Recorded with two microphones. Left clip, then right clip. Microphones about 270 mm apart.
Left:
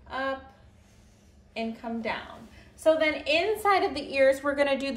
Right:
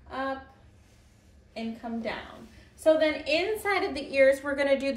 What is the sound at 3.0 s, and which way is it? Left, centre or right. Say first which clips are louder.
Speech: left 1 dB; centre.